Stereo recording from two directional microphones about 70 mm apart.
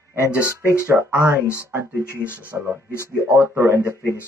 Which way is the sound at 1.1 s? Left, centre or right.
Right.